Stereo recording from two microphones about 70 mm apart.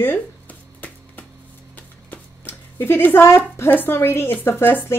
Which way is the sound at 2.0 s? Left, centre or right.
Left.